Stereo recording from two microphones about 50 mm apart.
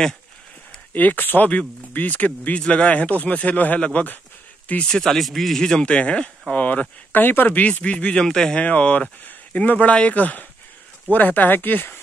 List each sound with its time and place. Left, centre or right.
0.9 s speech: left
4.8 s speech: centre
5.9 s speech: left
8.2 s speech: centre
8.5 s speech: left